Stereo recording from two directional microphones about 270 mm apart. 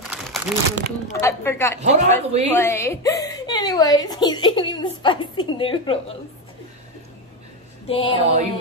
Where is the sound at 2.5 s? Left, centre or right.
Centre.